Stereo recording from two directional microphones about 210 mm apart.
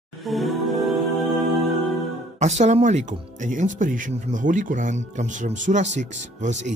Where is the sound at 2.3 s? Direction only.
35° right (ahead or behind).